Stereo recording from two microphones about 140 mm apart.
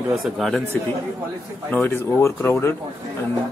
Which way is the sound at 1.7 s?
15° left (ahead or behind).